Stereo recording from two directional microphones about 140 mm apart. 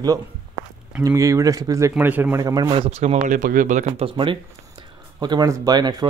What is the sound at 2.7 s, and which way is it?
Speech, 45° right (ahead or behind).